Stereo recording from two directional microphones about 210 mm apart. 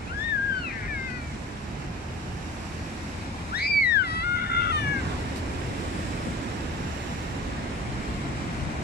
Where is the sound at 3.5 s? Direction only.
50° left (ahead or behind).